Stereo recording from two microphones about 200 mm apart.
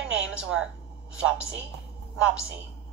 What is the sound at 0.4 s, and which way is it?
Speech, 5° right (ahead or behind).